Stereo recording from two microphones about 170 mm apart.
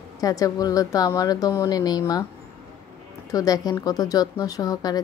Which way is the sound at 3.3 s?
20° left (ahead or behind).